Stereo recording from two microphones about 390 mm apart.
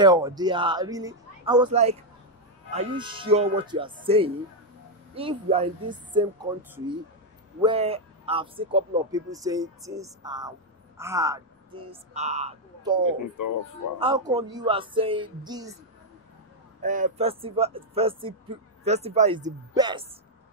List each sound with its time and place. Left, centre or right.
0.0 s speech: centre
7.6 s speech: centre
13.0 s speech: left
13.9 s speech: centre
16.8 s speech: centre